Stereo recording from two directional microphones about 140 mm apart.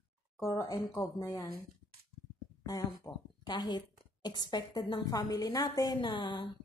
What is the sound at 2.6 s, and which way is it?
A woman's voice, 25° left (ahead or behind).